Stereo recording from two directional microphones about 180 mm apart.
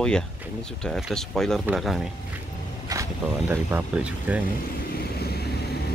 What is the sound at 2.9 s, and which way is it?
Speech, 15° right (ahead or behind).